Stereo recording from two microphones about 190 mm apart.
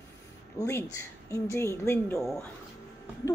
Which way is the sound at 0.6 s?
15° left (ahead or behind).